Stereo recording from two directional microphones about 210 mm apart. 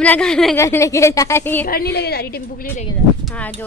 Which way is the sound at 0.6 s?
15° left (ahead or behind).